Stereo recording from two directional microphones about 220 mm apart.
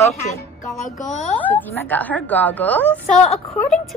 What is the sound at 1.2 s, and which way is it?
A woman's voice, 5° left (ahead or behind).